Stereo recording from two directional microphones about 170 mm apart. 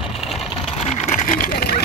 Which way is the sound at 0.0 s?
Centre (ahead or behind).